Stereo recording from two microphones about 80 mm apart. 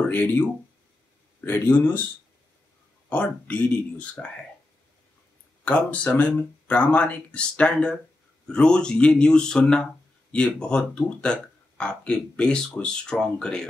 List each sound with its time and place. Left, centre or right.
0.0 s speech: left
3.1 s speech: centre
5.7 s speech: centre